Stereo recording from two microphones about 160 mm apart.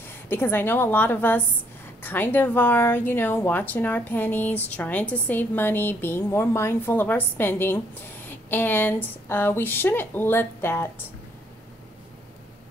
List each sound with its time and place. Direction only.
0.0 s a woman's voice: 15° left (ahead or behind)